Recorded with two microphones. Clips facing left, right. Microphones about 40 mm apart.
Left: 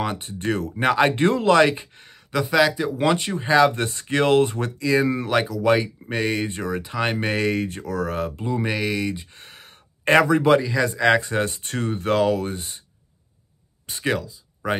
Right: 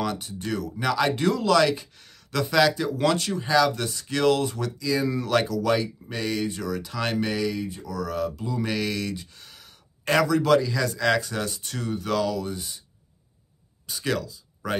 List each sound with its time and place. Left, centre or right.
0.0 s speech: left
0.3 s speech: left
5.3 s speech: centre
5.6 s speech: left
8.6 s speech: left
14.0 s speech: centre